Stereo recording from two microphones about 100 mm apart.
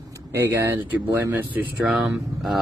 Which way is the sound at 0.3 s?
25° right (ahead or behind).